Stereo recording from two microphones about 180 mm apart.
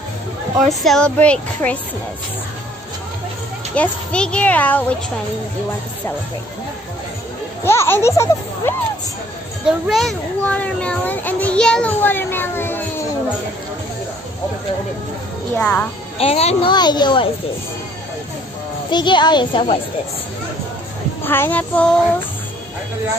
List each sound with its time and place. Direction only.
0.7 s speech: 5° left (ahead or behind)
3.7 s a child's voice: 5° left (ahead or behind)
7.6 s a child's voice: 15° left (ahead or behind)
9.7 s a child's voice: centre (ahead or behind)
15.5 s a child's voice: 10° left (ahead or behind)
16.2 s a child's voice: 35° left (ahead or behind)
16.7 s speech: 25° left (ahead or behind)
18.9 s speech: 25° left (ahead or behind)
21.2 s a child's voice: 10° left (ahead or behind)